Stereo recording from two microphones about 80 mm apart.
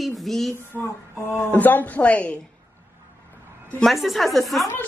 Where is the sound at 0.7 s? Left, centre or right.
Right.